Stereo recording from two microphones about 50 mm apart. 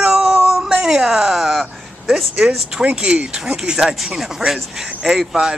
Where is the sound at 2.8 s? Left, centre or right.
Right.